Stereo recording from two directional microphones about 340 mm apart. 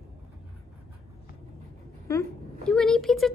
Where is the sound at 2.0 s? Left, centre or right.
Centre.